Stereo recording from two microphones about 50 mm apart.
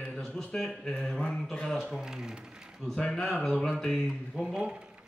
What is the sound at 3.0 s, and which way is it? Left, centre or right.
A man's voice, centre.